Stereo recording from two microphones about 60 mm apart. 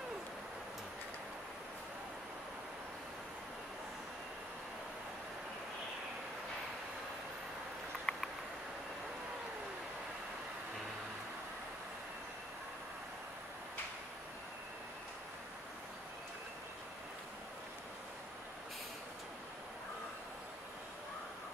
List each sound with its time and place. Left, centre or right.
8.1 s patter: centre